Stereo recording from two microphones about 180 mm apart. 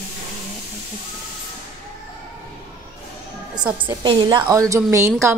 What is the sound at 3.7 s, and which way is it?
A woman's voice, 25° right (ahead or behind).